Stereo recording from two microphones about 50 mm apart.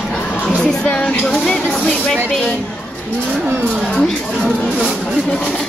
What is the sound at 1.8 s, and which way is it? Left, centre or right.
Speech, centre.